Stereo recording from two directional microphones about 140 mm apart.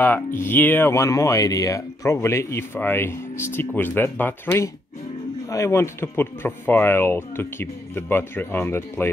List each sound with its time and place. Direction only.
0.0 s speech: 15° left (ahead or behind)